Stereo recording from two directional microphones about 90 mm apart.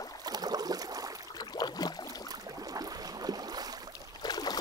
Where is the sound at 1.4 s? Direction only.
50° left (ahead or behind).